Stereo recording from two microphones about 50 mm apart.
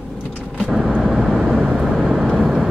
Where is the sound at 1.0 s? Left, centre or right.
Centre.